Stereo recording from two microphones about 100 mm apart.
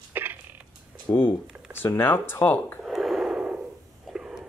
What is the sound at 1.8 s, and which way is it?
Speech, 20° left (ahead or behind).